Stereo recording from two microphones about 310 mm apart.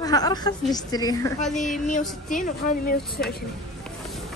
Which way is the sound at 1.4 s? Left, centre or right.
Centre.